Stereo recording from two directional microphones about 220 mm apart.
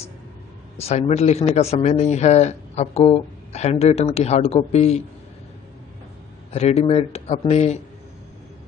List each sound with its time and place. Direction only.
0.7 s a man's voice: 30° left (ahead or behind)
6.5 s a man's voice: 30° left (ahead or behind)